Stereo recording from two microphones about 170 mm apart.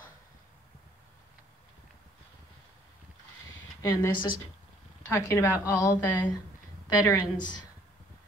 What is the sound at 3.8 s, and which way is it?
A woman's voice, 20° left (ahead or behind).